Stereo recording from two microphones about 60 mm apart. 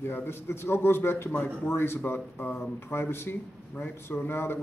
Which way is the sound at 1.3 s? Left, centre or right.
Left.